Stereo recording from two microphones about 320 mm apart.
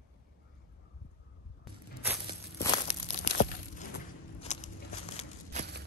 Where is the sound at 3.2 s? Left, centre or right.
Left.